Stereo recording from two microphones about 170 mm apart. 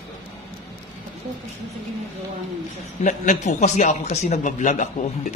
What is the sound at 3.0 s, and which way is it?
A man's voice, 45° left (ahead or behind).